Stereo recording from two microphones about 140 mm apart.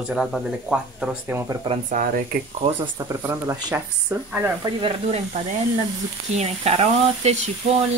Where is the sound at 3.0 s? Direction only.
20° right (ahead or behind).